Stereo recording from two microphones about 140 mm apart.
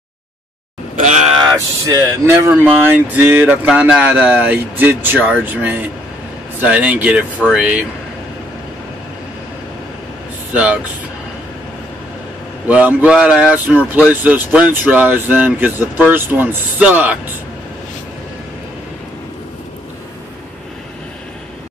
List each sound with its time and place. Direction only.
0.9 s groan: 60° right (ahead or behind)
1.4 s speech: 20° right (ahead or behind); by 7.8 s 5° right (ahead or behind)
10.5 s speech: 10° right (ahead or behind)
12.6 s speech: 10° right (ahead or behind)